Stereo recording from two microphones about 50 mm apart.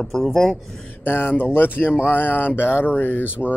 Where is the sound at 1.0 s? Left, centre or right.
Left.